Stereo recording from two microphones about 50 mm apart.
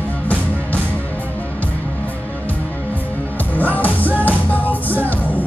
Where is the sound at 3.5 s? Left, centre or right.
Left.